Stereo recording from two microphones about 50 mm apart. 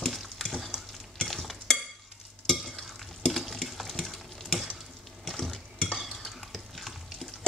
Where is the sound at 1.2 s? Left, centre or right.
Centre.